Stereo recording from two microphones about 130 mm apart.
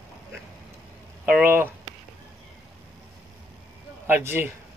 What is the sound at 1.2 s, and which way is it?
Speech, 10° right (ahead or behind).